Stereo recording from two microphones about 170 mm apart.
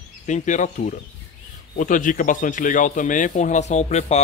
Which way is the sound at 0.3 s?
45° left (ahead or behind).